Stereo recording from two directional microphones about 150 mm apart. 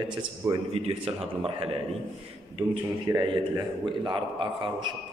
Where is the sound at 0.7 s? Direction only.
40° right (ahead or behind).